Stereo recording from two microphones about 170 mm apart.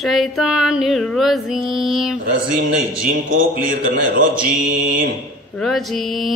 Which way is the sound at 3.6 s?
55° right (ahead or behind).